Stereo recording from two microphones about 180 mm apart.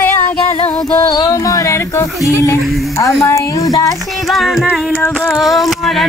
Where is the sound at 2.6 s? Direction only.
Centre (ahead or behind).